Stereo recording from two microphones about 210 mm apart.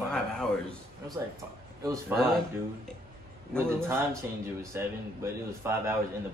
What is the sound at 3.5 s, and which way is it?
A man's voice, 10° right (ahead or behind).